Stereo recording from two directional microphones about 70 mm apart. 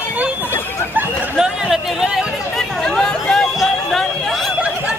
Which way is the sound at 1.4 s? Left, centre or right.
Centre.